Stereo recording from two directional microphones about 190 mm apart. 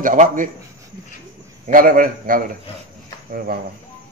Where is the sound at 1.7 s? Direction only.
50° right (ahead or behind).